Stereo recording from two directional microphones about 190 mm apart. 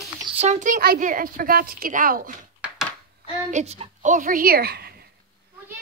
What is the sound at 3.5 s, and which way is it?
Speech, 35° right (ahead or behind).